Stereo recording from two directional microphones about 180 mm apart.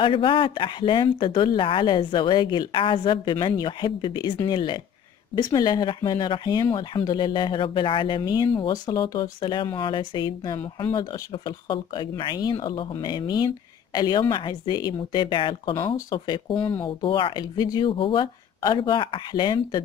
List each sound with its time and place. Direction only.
0.0 s speech: 30° left (ahead or behind)
16.5 s speech: 10° left (ahead or behind)
16.8 s speech: 30° left (ahead or behind)